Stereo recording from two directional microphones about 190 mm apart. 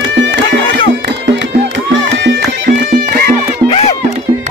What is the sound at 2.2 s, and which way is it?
Music, 55° right (ahead or behind).